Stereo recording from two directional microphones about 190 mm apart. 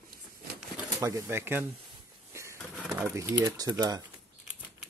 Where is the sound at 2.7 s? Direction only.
5° right (ahead or behind).